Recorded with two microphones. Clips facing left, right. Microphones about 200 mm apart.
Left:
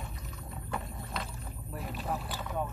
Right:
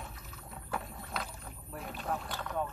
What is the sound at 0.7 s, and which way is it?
Vehicle, centre (ahead or behind).